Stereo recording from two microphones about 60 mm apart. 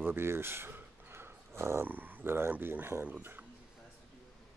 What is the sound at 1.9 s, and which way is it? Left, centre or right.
Speech, right.